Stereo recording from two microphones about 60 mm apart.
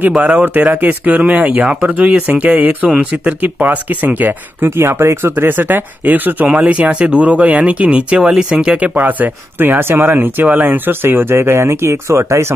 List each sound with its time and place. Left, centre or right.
0.1 s speech: right
4.6 s speech: right; by 8.9 s centre
8.9 s speech: right